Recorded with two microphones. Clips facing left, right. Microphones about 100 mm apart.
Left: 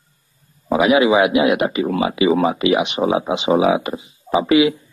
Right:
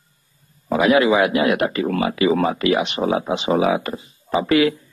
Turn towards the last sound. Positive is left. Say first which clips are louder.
# left 2 dB
turn(degrees=10)  # may be behind; listen again after turning